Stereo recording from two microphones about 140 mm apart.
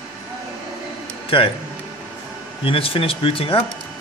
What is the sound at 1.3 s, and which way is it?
Speech, 40° left (ahead or behind).